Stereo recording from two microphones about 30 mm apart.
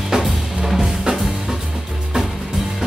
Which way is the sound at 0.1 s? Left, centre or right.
Right.